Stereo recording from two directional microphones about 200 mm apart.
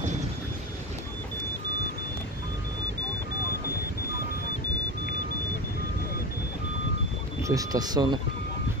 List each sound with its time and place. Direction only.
7.4 s speech: 20° right (ahead or behind)